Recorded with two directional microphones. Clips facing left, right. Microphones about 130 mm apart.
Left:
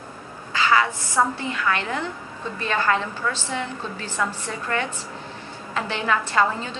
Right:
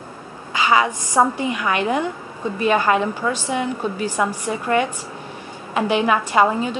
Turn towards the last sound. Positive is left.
turn(degrees=-15)  # may be behind; listen again after turning